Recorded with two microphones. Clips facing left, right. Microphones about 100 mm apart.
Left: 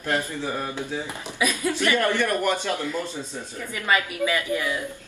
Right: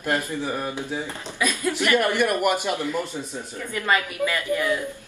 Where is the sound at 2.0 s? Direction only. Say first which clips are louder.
Right 1 dB; 15° right (ahead or behind).